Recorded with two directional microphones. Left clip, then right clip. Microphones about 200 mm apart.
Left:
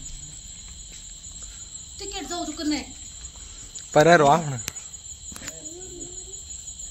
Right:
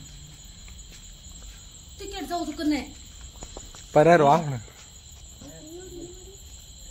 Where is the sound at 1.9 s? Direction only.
50° right (ahead or behind).